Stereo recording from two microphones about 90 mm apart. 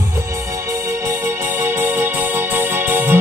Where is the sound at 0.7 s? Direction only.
30° right (ahead or behind).